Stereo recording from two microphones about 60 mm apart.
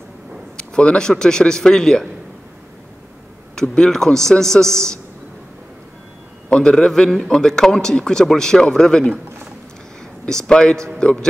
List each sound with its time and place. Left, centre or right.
0.6 s a man's voice: centre
3.5 s a man's voice: centre
6.5 s a man's voice: centre
10.2 s a man's voice: centre